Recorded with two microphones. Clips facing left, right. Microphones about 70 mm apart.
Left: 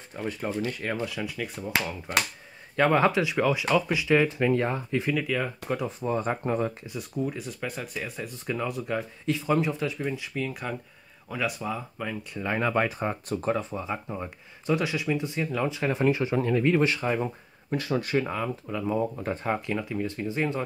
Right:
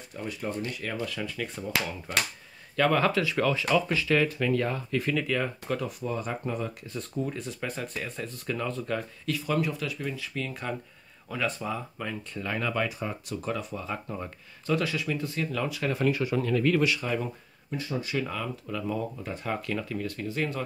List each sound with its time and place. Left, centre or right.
0.1 s speech: left
1.0 s speech: centre
2.7 s speech: left; by 5.5 s centre
5.7 s speech: left
6.9 s speech: centre
12.4 s speech: left
14.0 s speech: centre; by 17.3 s left
17.7 s speech: left
18.2 s speech: left
19.1 s speech: left